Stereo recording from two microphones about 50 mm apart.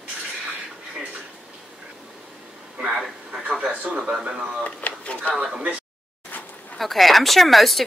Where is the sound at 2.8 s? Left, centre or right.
Centre.